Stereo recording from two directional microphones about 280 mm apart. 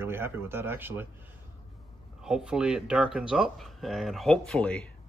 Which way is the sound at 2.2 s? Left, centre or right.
Centre.